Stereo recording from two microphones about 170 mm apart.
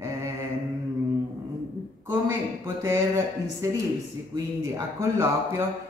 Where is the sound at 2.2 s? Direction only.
15° right (ahead or behind).